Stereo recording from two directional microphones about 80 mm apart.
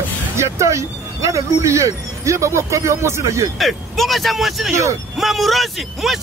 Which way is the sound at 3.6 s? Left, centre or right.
Centre.